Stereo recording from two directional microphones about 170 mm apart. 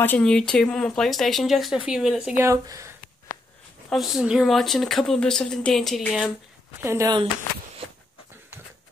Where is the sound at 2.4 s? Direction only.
15° right (ahead or behind).